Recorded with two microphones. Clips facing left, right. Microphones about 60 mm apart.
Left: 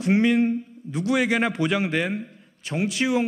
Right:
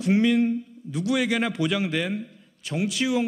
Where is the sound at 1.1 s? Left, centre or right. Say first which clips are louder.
Left 3 dB; left.